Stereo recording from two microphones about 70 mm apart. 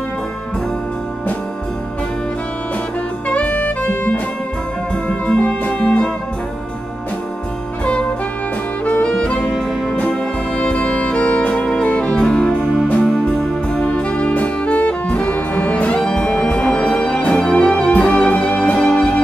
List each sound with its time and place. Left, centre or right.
3.3 s saxophone: centre
5.0 s music: centre
7.8 s music: centre
10.6 s music: centre